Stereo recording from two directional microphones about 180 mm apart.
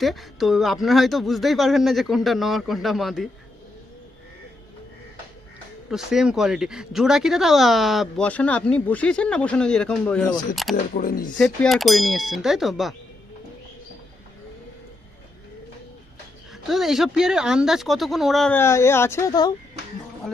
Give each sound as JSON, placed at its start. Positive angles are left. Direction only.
{"t": 0.0, "sound": "speech", "side_deg": 0}
{"t": 5.9, "sound": "speech", "side_deg": 0}
{"t": 11.0, "sound": "speech", "side_deg": 50}
{"t": 11.3, "sound": "speech", "side_deg": 5}
{"t": 16.6, "sound": "speech", "side_deg": 0}
{"t": 18.6, "sound": "speech", "side_deg": 15}